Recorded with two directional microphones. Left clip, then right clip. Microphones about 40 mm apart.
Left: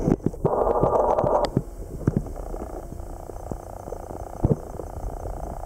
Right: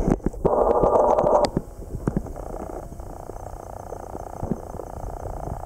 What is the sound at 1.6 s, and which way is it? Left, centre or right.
Purr, centre.